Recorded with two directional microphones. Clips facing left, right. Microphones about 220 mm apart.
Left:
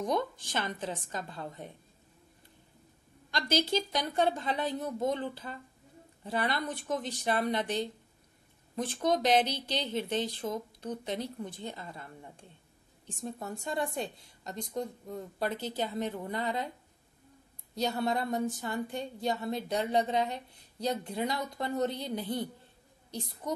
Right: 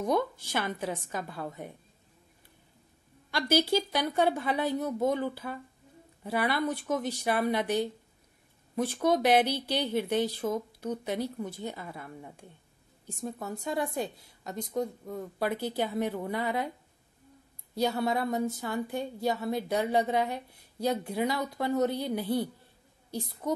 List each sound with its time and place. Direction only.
0.5 s a woman's voice: 10° right (ahead or behind)
3.3 s a woman's voice: 10° right (ahead or behind)
13.7 s a woman's voice: centre (ahead or behind)
17.7 s a woman's voice: 5° right (ahead or behind)